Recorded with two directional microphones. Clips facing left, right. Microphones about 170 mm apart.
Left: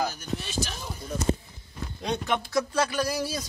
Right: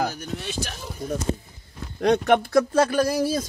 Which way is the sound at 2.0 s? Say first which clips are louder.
Right 10 dB; 65° right (ahead or behind).